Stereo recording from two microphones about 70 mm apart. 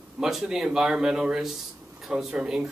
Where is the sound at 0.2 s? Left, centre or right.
Centre.